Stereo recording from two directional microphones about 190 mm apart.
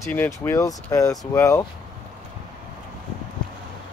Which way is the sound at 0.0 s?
10° left (ahead or behind).